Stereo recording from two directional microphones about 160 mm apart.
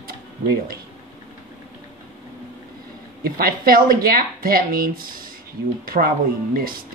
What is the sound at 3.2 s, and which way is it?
Speech, 65° right (ahead or behind).